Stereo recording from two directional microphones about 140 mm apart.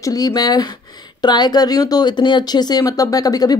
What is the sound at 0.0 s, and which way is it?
Speech, 25° left (ahead or behind).